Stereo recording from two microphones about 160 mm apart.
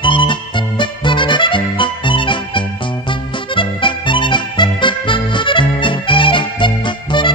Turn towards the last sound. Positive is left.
turn(degrees=30)  # may be behind; listen again after turning